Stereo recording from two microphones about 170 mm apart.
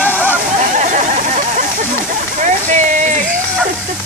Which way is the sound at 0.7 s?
45° right (ahead or behind).